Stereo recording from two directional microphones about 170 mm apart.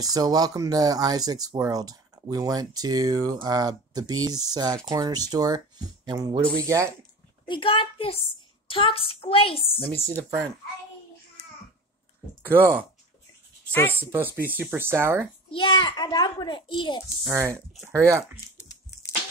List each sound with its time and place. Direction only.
0.0 s speech: 20° right (ahead or behind)
7.4 s a woman's voice: 30° left (ahead or behind)
12.4 s speech: 10° right (ahead or behind)
13.7 s speech: 10° left (ahead or behind)
13.9 s speech: 10° right (ahead or behind)
15.5 s a child's voice: 30° left (ahead or behind)
17.3 s speech: 15° right (ahead or behind)